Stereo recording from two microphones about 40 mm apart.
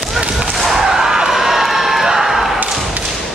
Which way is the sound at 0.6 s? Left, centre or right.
Centre.